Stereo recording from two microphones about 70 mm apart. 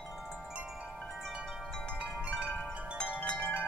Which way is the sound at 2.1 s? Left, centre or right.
Centre.